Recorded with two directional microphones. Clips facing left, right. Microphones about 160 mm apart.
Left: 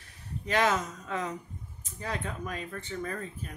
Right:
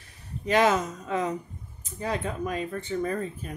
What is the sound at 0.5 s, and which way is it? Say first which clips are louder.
Speech: right 5 dB; 10° right (ahead or behind).